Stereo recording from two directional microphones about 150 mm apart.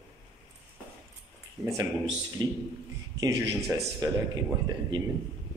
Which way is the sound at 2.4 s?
30° right (ahead or behind).